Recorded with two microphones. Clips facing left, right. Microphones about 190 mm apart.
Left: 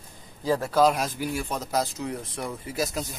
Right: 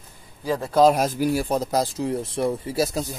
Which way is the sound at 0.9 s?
45° right (ahead or behind).